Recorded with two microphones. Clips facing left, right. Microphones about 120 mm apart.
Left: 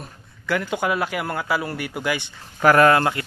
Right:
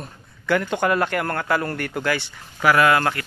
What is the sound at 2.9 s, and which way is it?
Speech, 25° left (ahead or behind).